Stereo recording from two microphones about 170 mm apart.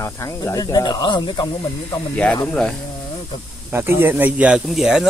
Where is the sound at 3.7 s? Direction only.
15° right (ahead or behind).